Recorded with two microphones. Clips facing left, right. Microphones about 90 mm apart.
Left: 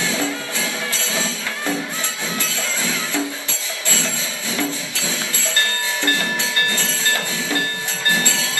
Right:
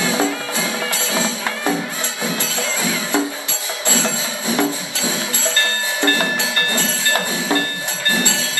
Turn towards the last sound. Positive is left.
turn(degrees=-20)  # may be behind; listen again after turning